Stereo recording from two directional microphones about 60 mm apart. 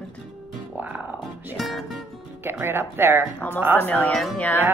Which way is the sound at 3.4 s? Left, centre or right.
Left.